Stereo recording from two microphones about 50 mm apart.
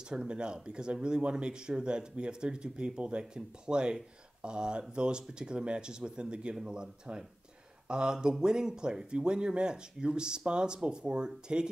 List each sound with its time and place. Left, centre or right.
0.1 s speech: centre